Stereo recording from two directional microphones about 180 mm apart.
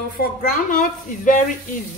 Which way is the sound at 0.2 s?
55° left (ahead or behind).